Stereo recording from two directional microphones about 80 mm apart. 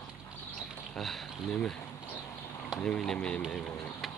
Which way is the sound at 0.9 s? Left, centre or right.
Centre.